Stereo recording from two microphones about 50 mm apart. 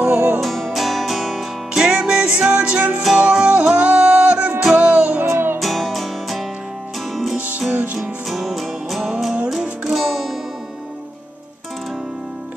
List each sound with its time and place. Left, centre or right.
0.0 s music: right
0.4 s music: centre
1.8 s music: centre
5.2 s music: right
5.6 s music: centre
7.3 s music: right
8.0 s music: centre